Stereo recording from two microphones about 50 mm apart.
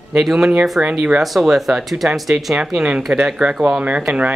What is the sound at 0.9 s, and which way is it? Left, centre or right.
Speech, right.